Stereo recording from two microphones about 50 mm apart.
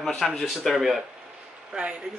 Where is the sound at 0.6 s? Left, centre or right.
Centre.